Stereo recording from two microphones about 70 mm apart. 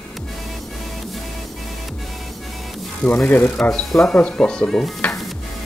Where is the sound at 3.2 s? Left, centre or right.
Left.